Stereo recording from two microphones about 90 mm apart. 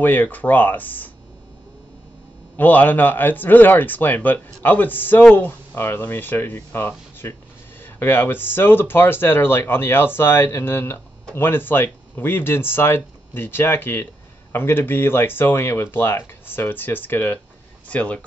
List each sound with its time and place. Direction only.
0.0 s speech: 20° left (ahead or behind)
2.5 s speech: 20° left (ahead or behind)